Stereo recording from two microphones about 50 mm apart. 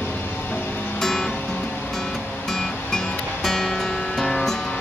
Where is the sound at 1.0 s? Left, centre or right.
Centre.